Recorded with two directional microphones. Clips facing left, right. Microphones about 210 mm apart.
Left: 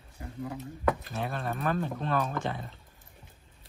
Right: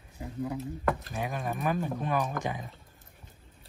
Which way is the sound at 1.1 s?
15° right (ahead or behind).